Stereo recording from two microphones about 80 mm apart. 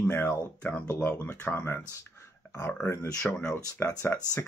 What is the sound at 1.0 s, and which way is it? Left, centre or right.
Speech, centre.